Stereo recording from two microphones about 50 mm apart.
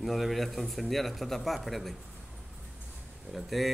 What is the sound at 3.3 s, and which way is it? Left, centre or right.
Speech, centre.